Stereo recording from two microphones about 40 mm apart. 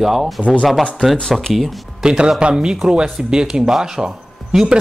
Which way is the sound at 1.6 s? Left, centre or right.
Centre.